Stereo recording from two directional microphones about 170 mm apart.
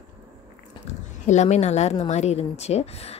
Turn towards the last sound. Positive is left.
turn(degrees=35)  # may be behind; listen again after turning